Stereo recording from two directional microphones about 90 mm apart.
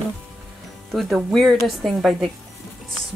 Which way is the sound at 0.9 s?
Centre (ahead or behind).